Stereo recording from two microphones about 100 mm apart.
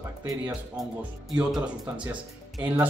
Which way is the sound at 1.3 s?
5° right (ahead or behind).